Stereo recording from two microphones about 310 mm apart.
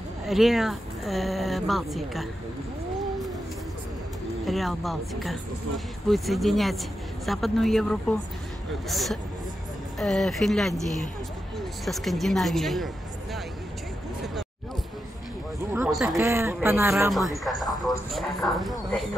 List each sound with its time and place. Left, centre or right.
0.3 s speech: centre
4.5 s speech: centre
15.7 s speech: centre